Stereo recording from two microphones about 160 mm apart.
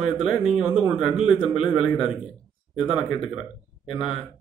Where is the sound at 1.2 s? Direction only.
30° left (ahead or behind).